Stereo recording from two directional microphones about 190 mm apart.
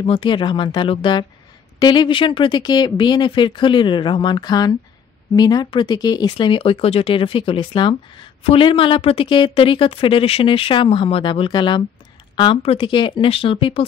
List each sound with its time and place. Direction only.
0.0 s speech: 25° left (ahead or behind)